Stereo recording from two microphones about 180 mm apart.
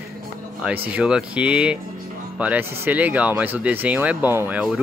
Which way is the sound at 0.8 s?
5° right (ahead or behind).